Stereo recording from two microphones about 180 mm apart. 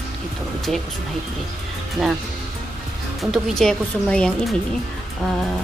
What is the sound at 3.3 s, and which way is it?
Speech, centre (ahead or behind).